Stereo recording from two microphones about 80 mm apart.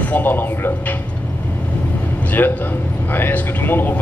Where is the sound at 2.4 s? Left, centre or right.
Left.